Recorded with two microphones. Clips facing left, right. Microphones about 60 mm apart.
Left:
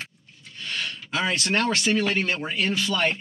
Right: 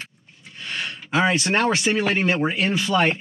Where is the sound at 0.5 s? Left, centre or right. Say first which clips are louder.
Right 1 dB; centre.